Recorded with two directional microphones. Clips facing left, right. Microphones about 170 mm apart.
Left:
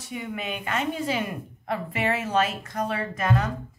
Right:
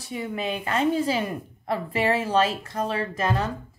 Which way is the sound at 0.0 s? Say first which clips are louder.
Right 3 dB; 35° right (ahead or behind).